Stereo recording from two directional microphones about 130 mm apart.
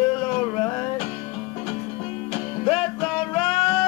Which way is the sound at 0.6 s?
45° left (ahead or behind).